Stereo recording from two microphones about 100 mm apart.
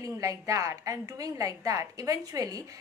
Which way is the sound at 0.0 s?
35° right (ahead or behind).